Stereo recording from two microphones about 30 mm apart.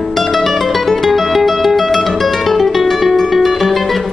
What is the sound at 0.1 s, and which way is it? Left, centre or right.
Music, centre.